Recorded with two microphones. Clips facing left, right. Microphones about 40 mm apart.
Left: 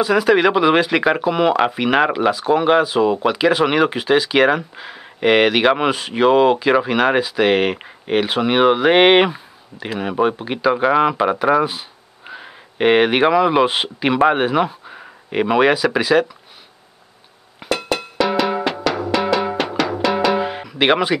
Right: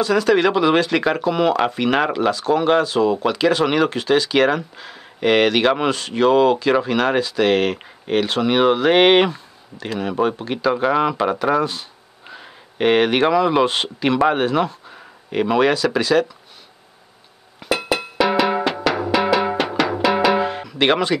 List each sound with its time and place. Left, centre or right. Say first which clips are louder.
0.0 s speech: left 2 dB; centre
17.6 s music: even; centre
20.4 s music: left 1 dB; centre